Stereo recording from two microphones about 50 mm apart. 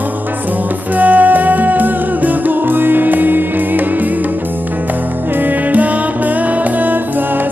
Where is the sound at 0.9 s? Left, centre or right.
Right.